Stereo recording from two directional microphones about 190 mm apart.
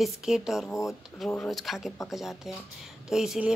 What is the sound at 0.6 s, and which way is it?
Speech, 15° left (ahead or behind).